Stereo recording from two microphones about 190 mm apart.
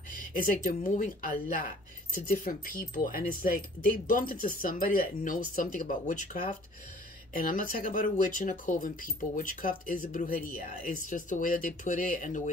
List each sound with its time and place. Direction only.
0.3 s speech: 45° left (ahead or behind)